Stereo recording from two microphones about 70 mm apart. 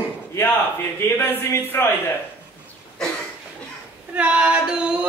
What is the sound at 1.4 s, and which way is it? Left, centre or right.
Speech, left.